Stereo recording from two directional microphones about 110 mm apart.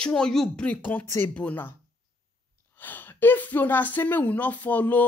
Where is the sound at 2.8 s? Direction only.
15° left (ahead or behind).